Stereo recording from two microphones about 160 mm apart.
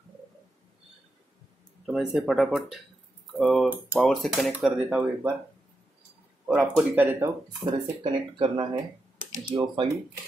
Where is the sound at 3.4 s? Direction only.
Centre (ahead or behind).